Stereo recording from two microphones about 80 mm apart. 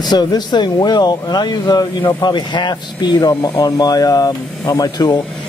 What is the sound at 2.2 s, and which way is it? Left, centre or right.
Speech, left.